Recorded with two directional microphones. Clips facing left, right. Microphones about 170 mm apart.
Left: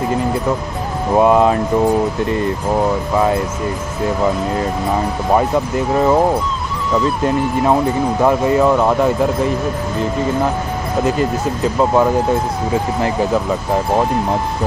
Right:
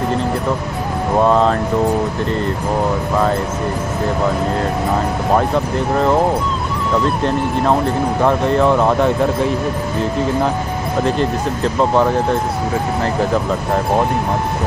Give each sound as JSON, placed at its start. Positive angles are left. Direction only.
{"t": 1.2, "sound": "speech", "side_deg": 10}
{"t": 5.3, "sound": "speech", "side_deg": 5}
{"t": 11.1, "sound": "speech", "side_deg": 5}